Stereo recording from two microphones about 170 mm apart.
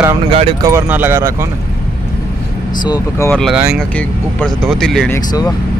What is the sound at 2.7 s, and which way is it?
Speech, 25° left (ahead or behind).